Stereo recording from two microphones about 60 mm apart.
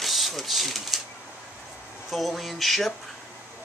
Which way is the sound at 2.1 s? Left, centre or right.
Centre.